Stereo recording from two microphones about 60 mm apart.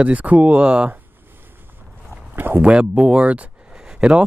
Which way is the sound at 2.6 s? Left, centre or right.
Centre.